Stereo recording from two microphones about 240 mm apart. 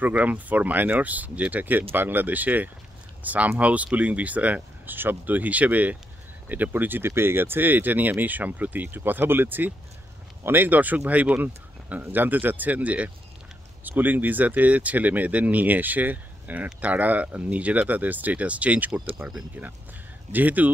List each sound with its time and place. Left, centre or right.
0.0 s speech: centre